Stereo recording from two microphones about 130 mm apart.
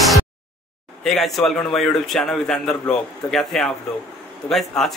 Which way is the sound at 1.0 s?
Centre (ahead or behind).